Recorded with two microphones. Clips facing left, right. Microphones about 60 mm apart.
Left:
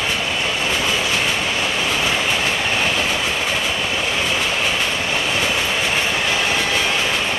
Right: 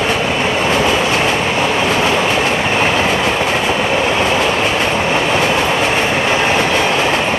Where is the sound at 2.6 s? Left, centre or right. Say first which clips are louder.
Right 6 dB; right.